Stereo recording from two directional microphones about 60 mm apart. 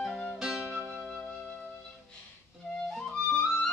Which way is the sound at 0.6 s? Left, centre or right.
Right.